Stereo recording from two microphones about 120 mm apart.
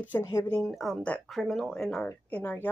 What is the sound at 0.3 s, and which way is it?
Speech, 25° left (ahead or behind).